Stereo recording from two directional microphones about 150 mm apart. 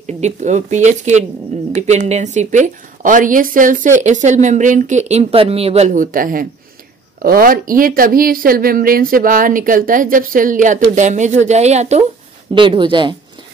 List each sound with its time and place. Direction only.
0.0 s speech: 50° right (ahead or behind)
12.5 s speech: 35° right (ahead or behind)